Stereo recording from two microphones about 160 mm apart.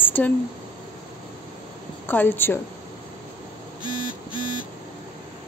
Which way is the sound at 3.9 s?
30° left (ahead or behind).